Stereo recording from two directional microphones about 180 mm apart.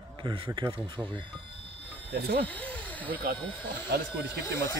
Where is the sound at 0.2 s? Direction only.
25° right (ahead or behind).